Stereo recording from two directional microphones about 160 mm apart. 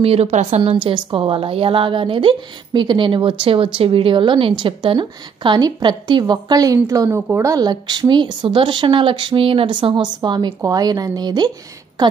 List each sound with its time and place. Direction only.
0.0 s a woman's voice: 40° right (ahead or behind)